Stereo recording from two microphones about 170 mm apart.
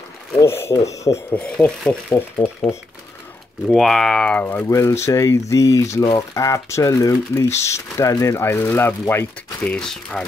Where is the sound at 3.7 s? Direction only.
Centre (ahead or behind).